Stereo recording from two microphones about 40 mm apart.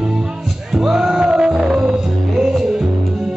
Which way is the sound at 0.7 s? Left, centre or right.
Centre.